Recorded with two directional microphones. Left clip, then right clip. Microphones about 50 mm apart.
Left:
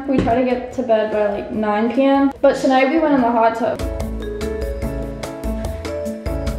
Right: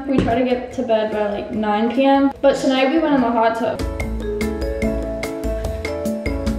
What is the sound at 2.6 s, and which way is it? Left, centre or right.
A woman's voice, left.